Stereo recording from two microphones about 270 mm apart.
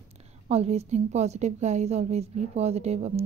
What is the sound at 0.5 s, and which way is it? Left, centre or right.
A woman's voice, right.